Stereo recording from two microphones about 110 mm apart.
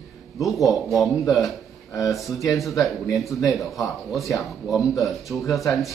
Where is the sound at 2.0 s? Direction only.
30° left (ahead or behind).